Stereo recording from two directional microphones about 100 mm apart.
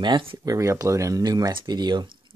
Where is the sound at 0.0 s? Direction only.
55° right (ahead or behind).